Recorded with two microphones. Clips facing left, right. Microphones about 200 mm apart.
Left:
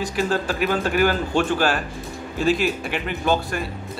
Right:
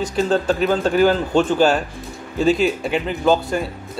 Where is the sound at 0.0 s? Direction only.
25° right (ahead or behind).